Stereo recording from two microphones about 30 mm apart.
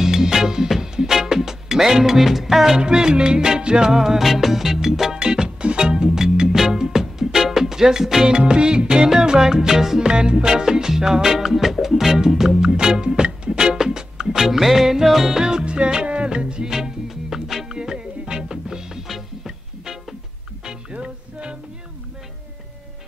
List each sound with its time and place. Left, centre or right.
0.0 s music: centre
2.8 s music: right
4.2 s music: centre
5.2 s music: right
6.0 s music: centre
8.4 s music: right
10.0 s music: right
15.6 s music: right
16.7 s music: centre
17.8 s music: right
19.0 s music: centre
20.9 s music: right